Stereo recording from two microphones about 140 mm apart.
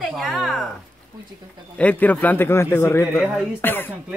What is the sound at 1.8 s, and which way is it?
A man's voice, 10° left (ahead or behind).